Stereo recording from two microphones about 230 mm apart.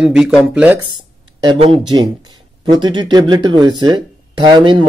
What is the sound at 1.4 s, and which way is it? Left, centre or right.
Speech, right.